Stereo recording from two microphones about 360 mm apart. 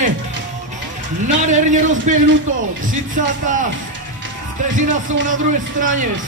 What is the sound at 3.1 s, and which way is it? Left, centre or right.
Speech, right.